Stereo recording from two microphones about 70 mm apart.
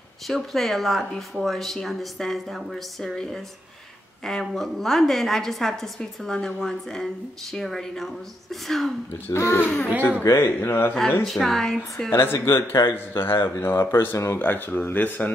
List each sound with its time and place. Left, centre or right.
0.3 s a woman's voice: centre
9.1 s a man's voice: left
9.6 s speech: left
10.3 s a man's voice: left
11.2 s a woman's voice: centre
12.1 s a man's voice: left
14.4 s speech: left